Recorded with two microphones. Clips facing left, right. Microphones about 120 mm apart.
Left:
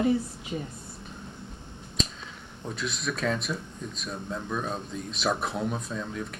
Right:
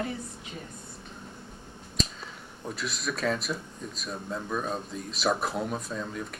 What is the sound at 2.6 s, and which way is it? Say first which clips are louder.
Speech: left 1 dB; centre (ahead or behind).